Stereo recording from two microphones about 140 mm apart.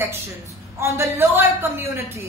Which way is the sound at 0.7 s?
20° right (ahead or behind).